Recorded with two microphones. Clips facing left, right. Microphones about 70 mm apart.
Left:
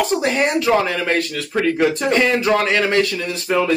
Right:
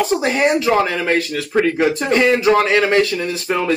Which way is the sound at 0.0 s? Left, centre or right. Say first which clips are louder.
Right 2 dB; centre.